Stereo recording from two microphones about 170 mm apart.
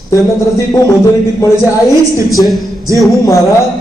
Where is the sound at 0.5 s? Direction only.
20° left (ahead or behind).